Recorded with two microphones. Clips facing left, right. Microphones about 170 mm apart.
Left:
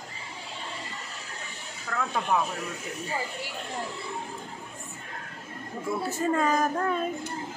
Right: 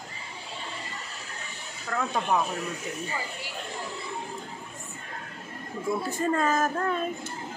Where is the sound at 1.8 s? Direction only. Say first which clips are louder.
Right 1 dB; 5° right (ahead or behind).